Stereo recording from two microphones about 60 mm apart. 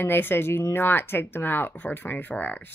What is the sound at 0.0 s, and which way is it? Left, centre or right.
A woman's voice, left.